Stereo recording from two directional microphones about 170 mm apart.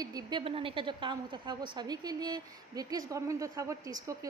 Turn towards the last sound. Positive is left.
turn(degrees=-20)  # may be behind; listen again after turning